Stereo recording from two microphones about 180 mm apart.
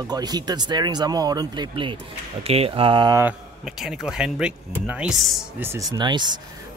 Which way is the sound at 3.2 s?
5° right (ahead or behind).